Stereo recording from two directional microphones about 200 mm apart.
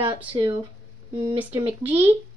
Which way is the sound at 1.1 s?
25° right (ahead or behind).